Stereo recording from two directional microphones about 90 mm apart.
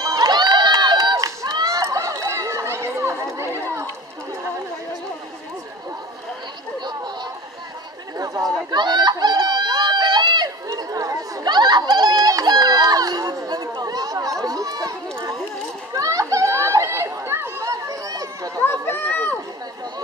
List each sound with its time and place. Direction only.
0.0 s run: 50° right (ahead or behind)
1.1 s chatter: 45° right (ahead or behind)
8.2 s chatter: 45° right (ahead or behind)
8.6 s a sound: 55° right (ahead or behind)
10.7 s chatter: 40° right (ahead or behind)
15.9 s run: 40° right (ahead or behind)
18.6 s a sound: 20° left (ahead or behind)